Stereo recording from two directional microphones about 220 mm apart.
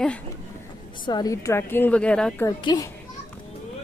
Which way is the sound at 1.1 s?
15° left (ahead or behind).